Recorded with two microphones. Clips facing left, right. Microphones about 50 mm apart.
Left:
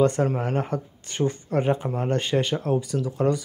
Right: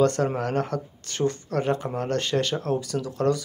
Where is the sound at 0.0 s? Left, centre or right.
Centre.